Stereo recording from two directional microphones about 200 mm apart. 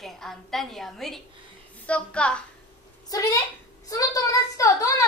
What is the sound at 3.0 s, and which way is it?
A woman's voice, 15° left (ahead or behind).